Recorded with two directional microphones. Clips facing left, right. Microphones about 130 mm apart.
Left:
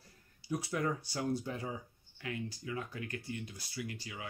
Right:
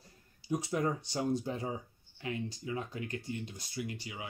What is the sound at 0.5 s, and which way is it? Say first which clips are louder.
Speech: right 3 dB; 20° right (ahead or behind).